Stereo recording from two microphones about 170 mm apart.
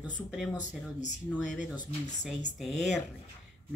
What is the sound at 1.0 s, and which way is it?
Speech, 45° left (ahead or behind).